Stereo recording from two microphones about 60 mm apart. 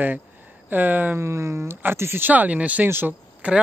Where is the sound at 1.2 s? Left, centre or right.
Right.